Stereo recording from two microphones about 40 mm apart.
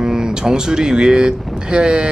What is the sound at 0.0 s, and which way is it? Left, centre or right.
Speech, centre.